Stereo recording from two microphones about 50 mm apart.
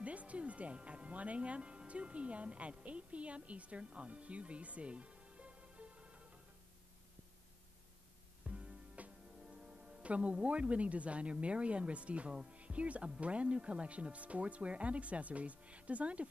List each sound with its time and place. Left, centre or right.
0.0 s speech: right
8.5 s speech: right